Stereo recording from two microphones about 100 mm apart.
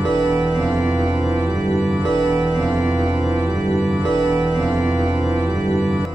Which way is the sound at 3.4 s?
15° right (ahead or behind).